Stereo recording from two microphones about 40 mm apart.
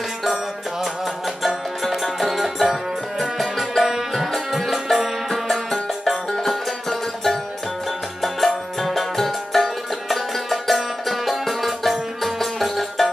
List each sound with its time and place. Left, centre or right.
1.8 s music: centre